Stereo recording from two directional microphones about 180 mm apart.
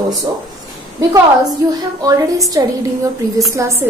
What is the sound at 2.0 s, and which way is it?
Speech, 20° right (ahead or behind).